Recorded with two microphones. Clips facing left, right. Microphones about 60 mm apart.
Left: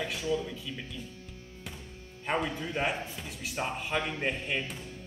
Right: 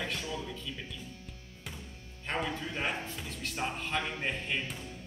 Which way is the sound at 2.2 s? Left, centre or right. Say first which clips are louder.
Left 3 dB; centre.